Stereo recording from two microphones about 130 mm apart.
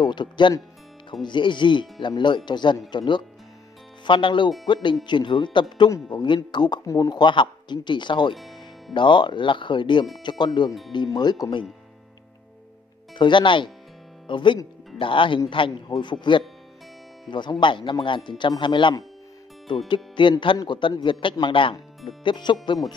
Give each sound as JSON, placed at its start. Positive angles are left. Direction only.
{"t": 0.0, "sound": "speech", "side_deg": 35}
{"t": 8.4, "sound": "music", "side_deg": 0}
{"t": 8.9, "sound": "speech", "side_deg": 40}
{"t": 13.1, "sound": "speech", "side_deg": 40}